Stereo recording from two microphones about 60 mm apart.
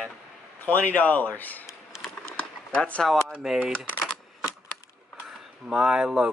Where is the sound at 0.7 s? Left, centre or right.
Left.